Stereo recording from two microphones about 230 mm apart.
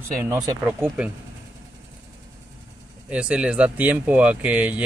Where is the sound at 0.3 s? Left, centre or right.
Centre.